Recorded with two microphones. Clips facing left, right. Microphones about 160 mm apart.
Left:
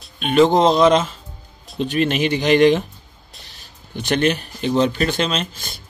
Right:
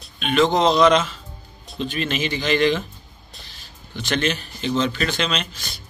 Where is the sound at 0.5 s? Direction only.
50° left (ahead or behind).